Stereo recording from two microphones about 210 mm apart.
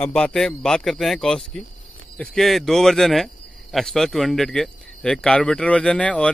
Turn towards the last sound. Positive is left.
turn(degrees=5)  # may be behind; listen again after turning